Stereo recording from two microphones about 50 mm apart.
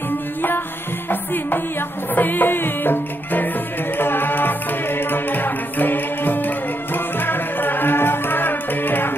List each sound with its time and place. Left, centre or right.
2.1 s music: left